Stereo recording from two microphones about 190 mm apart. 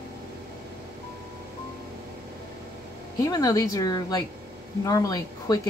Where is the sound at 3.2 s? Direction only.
20° left (ahead or behind).